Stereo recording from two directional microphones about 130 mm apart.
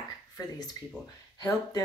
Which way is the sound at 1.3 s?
30° left (ahead or behind).